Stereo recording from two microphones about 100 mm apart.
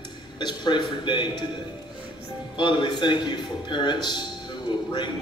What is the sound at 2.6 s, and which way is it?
A man's voice, 50° left (ahead or behind).